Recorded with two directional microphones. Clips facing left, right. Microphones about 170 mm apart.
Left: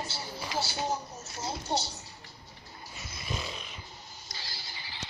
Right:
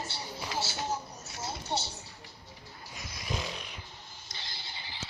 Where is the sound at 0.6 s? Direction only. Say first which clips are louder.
Left 2 dB; 15° left (ahead or behind).